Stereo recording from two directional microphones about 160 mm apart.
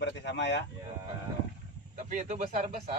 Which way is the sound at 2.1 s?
45° right (ahead or behind).